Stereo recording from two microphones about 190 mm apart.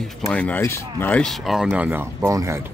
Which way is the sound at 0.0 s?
5° left (ahead or behind).